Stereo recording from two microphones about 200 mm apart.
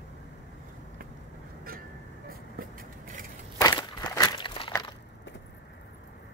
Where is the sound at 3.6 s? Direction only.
20° left (ahead or behind).